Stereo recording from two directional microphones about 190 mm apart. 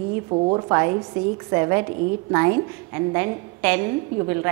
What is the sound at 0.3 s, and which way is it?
A woman's voice, 25° right (ahead or behind).